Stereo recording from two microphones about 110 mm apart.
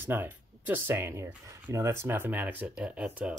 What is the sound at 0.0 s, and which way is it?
Speech, 20° right (ahead or behind).